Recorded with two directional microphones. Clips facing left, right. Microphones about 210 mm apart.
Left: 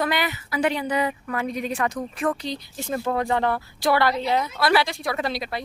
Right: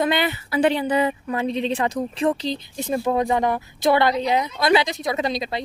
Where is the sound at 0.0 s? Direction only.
25° right (ahead or behind).